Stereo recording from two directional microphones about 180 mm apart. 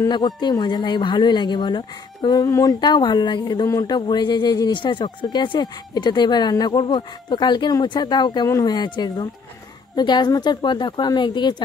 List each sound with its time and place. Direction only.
0.0 s speech: 25° left (ahead or behind)